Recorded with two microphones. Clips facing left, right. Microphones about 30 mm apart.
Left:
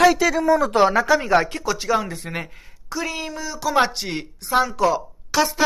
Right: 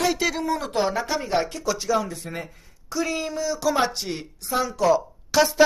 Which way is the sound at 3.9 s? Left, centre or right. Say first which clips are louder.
Left 3 dB; left.